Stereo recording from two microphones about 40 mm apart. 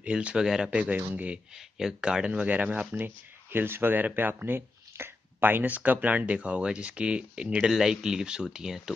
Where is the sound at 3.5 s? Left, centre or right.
Right.